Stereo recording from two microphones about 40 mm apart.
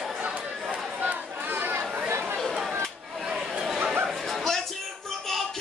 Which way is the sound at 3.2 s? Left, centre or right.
Centre.